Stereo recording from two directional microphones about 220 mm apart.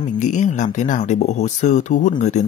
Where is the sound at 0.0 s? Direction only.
35° left (ahead or behind).